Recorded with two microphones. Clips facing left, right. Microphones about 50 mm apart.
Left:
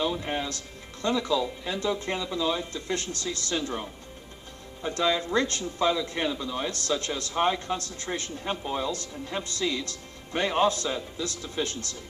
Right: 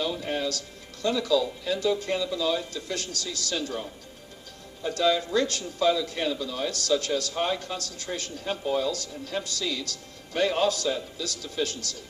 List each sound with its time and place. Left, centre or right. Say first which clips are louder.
0.0 s a man's voice: even; left